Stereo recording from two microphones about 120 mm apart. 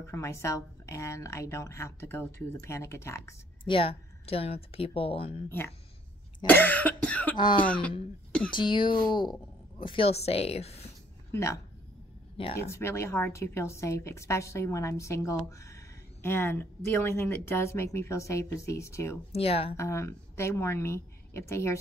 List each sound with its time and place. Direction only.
0.0 s speech: 25° left (ahead or behind)
3.6 s speech: 50° left (ahead or behind)
6.4 s cough: 15° left (ahead or behind)
7.3 s speech: 40° left (ahead or behind)
7.6 s speech: 10° left (ahead or behind)
8.5 s a woman's voice: 40° left (ahead or behind); by 10.9 s 60° left (ahead or behind)
11.3 s speech: 25° left (ahead or behind)
12.6 s speech: 20° left (ahead or behind)
19.3 s a woman's voice: 55° left (ahead or behind)
19.8 s a woman's voice: 25° left (ahead or behind)